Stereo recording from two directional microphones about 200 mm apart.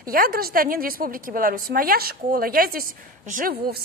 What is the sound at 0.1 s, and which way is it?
A woman's voice, 50° right (ahead or behind).